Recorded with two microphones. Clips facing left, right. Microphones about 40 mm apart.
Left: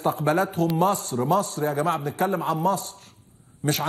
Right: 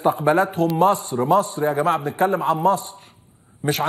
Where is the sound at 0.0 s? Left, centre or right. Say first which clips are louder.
Right 5 dB; centre.